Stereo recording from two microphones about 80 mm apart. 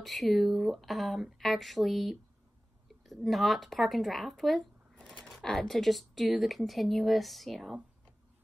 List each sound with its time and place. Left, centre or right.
0.0 s speech: centre